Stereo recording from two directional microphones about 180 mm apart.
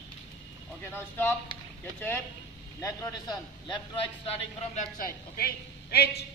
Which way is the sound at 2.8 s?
20° left (ahead or behind).